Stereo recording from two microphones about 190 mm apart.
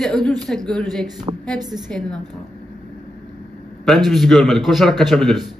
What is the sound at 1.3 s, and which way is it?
Speech, 25° right (ahead or behind).